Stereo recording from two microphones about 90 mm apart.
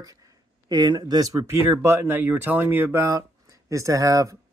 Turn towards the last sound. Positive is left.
turn(degrees=-40)  # may be behind; listen again after turning